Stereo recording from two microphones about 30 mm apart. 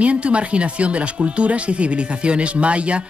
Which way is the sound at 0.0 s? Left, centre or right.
Right.